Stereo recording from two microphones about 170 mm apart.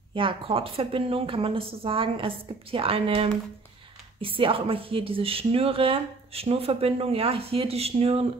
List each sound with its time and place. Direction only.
0.1 s a woman's voice: 30° right (ahead or behind)